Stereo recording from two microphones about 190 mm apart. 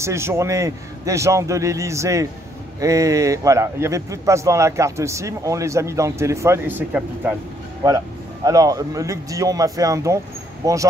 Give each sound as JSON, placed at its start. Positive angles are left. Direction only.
{"t": 0.0, "sound": "a man's voice", "side_deg": -15}
{"t": 8.5, "sound": "a man's voice", "side_deg": -20}